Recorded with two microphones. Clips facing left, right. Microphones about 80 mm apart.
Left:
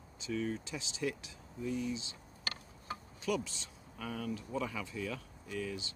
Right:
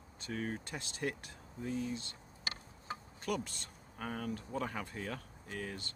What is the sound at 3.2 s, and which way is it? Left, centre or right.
Speech, right.